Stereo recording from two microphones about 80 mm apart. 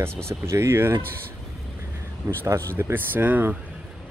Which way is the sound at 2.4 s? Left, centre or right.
Right.